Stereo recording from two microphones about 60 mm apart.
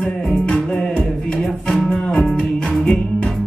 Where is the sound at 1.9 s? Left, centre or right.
Centre.